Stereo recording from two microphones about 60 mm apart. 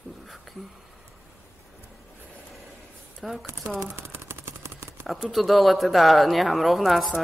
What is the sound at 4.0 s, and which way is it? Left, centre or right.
Machine gun, right.